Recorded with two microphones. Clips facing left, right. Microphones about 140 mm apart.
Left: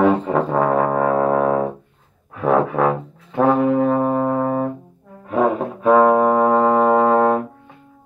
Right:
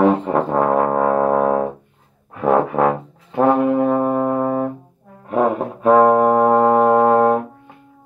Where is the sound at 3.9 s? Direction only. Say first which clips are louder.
Right 1 dB; 15° right (ahead or behind).